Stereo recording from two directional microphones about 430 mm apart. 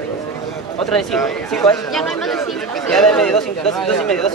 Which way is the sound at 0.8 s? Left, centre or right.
Centre.